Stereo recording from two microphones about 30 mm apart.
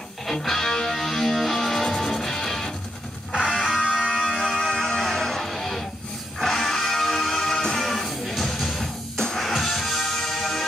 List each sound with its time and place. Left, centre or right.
0.3 s music: centre
9.1 s music: centre
9.5 s music: centre